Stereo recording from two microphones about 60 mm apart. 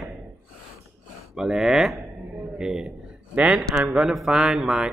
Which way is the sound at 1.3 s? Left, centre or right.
Centre.